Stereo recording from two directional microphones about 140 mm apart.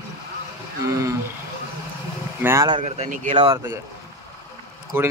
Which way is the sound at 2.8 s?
60° right (ahead or behind).